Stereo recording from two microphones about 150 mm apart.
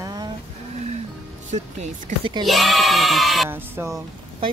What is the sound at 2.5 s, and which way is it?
Speech, centre (ahead or behind).